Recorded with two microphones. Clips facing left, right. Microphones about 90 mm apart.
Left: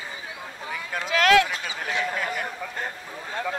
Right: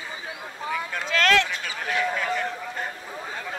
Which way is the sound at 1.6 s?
20° left (ahead or behind).